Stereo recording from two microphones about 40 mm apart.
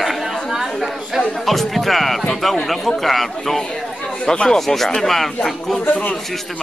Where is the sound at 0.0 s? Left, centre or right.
Centre.